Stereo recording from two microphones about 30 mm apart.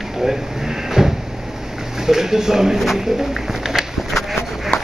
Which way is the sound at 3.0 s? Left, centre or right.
Centre.